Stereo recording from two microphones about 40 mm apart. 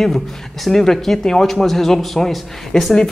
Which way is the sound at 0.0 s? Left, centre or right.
Centre.